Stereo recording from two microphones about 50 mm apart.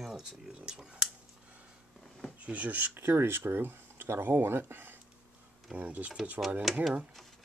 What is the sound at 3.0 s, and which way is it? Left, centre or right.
Speech, right.